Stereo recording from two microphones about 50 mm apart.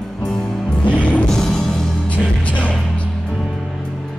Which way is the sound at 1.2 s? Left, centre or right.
Centre.